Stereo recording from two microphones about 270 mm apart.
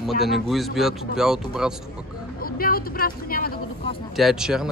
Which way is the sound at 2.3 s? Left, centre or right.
Left.